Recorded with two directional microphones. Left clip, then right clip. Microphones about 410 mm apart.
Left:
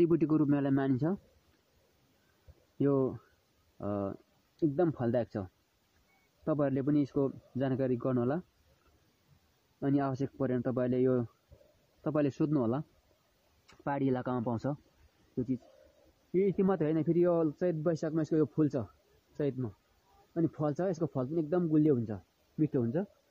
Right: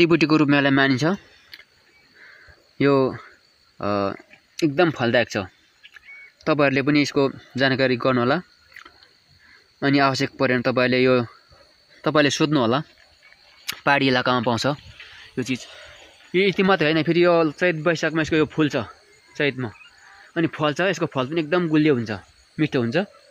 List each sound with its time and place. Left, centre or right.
0.0 s speech: left
2.8 s speech: centre
9.8 s speech: left
16.3 s speech: centre
20.3 s speech: left